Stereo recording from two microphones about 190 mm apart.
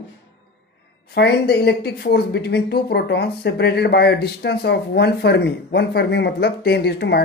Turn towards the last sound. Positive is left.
turn(degrees=60)  # may be behind; listen again after turning